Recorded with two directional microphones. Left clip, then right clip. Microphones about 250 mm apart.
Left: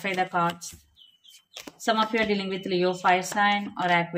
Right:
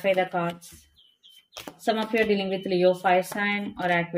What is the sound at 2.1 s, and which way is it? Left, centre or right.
Speech, centre.